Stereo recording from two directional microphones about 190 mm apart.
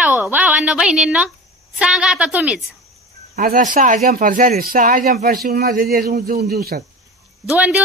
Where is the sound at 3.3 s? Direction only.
45° right (ahead or behind).